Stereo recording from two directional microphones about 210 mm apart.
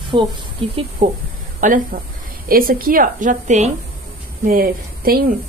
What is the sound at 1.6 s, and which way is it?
A woman's voice, 35° right (ahead or behind).